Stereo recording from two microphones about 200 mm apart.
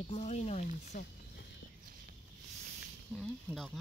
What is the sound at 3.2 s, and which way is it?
Speech, 5° left (ahead or behind).